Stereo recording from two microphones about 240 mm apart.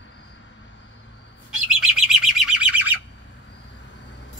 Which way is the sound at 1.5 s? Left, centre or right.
Centre.